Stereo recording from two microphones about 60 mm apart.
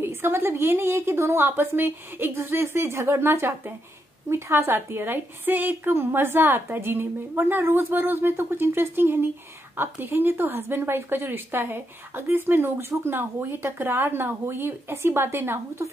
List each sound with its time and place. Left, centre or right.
0.0 s a woman's voice: right